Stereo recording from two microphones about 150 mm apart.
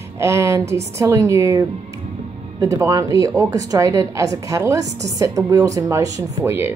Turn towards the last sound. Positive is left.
turn(degrees=-15)  # may be behind; listen again after turning